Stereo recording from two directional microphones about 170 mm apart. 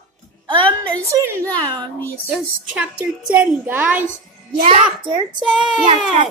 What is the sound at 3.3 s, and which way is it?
Speech, 10° right (ahead or behind).